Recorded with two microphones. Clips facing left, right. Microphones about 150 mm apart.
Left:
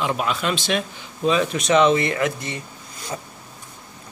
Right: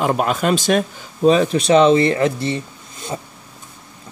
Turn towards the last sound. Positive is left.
turn(degrees=-25)  # may be behind; listen again after turning